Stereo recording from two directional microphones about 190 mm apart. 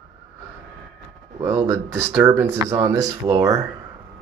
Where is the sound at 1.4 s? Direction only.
10° right (ahead or behind).